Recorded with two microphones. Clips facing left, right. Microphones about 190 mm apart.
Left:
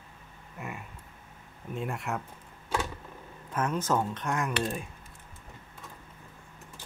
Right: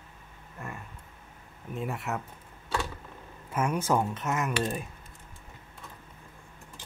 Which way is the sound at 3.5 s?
10° right (ahead or behind).